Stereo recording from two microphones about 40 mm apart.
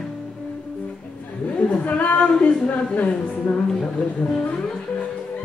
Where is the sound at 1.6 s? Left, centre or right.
Left.